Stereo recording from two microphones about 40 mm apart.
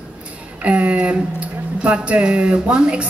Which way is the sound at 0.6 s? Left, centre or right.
Right.